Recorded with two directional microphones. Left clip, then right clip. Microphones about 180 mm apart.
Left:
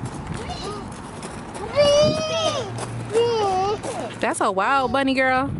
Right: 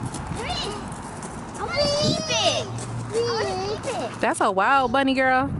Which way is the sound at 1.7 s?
10° left (ahead or behind).